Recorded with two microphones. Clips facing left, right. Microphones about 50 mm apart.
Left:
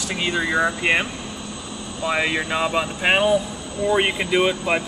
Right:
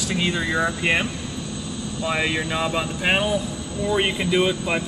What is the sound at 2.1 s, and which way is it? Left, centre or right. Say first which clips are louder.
Speech: left 2 dB; centre.